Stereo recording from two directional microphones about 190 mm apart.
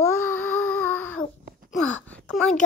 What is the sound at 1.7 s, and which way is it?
Speech, 5° left (ahead or behind).